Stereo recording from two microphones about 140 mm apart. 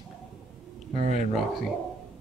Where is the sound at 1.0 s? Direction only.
60° right (ahead or behind).